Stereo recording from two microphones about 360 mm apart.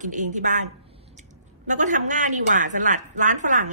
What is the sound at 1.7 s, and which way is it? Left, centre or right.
Speech, right.